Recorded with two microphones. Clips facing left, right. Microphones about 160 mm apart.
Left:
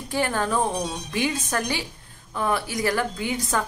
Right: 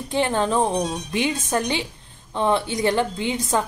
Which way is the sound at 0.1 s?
20° right (ahead or behind).